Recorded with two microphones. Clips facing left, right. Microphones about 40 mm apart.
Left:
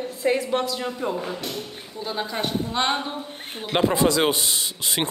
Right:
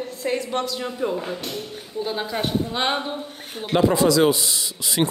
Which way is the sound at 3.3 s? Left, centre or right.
Left.